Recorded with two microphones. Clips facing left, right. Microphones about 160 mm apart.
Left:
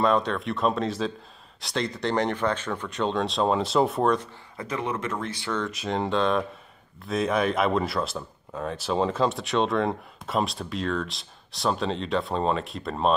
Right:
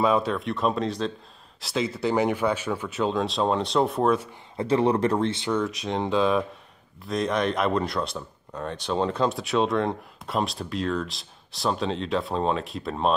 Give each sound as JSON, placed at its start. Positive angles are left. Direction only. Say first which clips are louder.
{"t": 0.0, "sound": "speech", "louder": "right 1 dB", "side_deg": -5}
{"t": 4.6, "sound": "speech", "louder": "right 8 dB", "side_deg": -30}
{"t": 5.3, "sound": "speech", "louder": "right 4 dB", "side_deg": -20}
{"t": 5.6, "sound": "speech", "louder": "right 1 dB", "side_deg": 0}